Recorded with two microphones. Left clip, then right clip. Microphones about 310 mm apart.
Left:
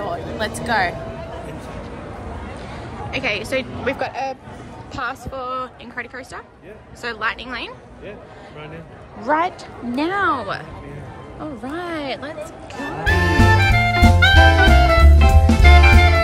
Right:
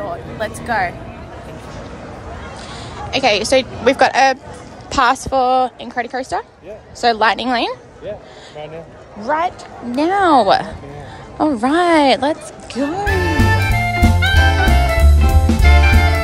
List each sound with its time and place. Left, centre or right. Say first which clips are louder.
0.0 s speech: right 1 dB; centre
3.1 s a woman's voice: right 9 dB; centre
9.3 s speech: right 1 dB; centre
9.9 s a woman's voice: right 8 dB; centre
11.8 s speech: right 15 dB; right
13.0 s music: left 2 dB; centre